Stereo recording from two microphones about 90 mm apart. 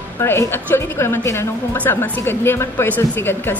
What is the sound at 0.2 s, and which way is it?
A woman's voice, 25° left (ahead or behind).